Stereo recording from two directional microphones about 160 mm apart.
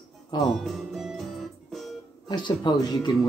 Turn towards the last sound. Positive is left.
turn(degrees=25)  # may be behind; listen again after turning